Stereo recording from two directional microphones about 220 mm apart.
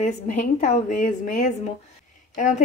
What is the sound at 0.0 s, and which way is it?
Speech, 35° left (ahead or behind).